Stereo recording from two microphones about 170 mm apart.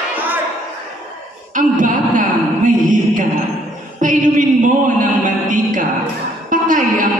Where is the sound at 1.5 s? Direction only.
50° right (ahead or behind).